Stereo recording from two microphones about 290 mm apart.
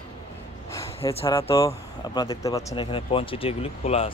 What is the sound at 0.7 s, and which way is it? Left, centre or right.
Speech, centre.